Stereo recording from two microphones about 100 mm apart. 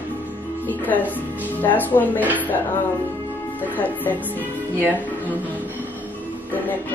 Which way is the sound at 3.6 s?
15° left (ahead or behind).